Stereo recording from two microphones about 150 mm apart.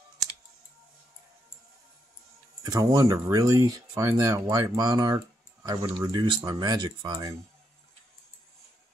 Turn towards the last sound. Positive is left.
turn(degrees=-30)  # may be behind; listen again after turning